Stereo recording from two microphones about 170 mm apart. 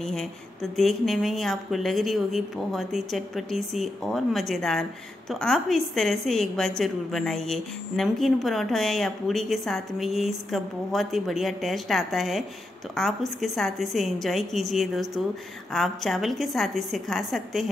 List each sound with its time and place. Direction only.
0.0 s speech: centre (ahead or behind)